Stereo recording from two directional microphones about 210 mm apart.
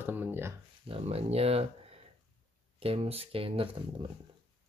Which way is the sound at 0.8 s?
30° right (ahead or behind).